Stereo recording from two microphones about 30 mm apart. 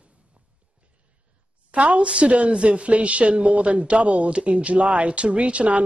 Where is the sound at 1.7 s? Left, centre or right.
Right.